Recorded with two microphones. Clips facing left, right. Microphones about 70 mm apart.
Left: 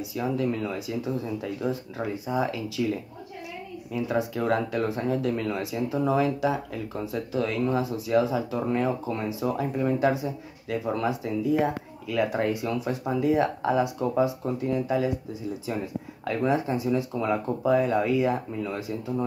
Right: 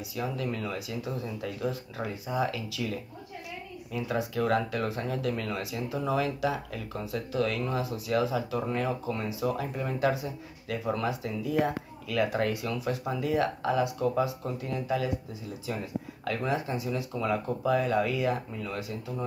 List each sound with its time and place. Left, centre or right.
0.1 s speech: left
16.3 s speech: centre